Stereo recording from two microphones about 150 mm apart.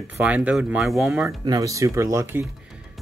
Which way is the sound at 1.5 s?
25° right (ahead or behind).